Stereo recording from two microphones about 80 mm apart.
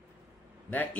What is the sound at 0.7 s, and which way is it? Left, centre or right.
Speech, left.